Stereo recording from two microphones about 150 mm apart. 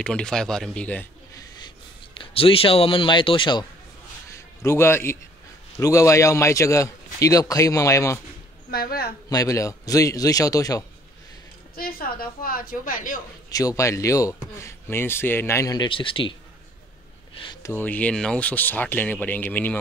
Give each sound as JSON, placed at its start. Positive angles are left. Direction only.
{"t": 0.0, "sound": "speech", "side_deg": 5}
{"t": 2.1, "sound": "speech", "side_deg": 40}
{"t": 4.3, "sound": "a sound", "side_deg": 20}
{"t": 5.8, "sound": "speech", "side_deg": 20}
{"t": 8.6, "sound": "speech", "side_deg": 90}
{"t": 9.3, "sound": "speech", "side_deg": 25}
{"t": 11.7, "sound": "a woman's voice", "side_deg": 80}
{"t": 13.5, "sound": "speech", "side_deg": 25}
{"t": 17.6, "sound": "speech", "side_deg": 15}